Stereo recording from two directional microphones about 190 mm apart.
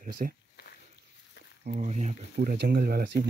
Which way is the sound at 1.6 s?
40° right (ahead or behind).